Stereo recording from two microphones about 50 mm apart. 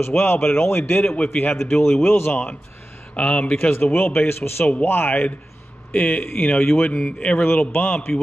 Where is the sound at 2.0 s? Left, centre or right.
Left.